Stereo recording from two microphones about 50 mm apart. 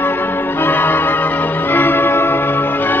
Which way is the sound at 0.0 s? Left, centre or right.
Left.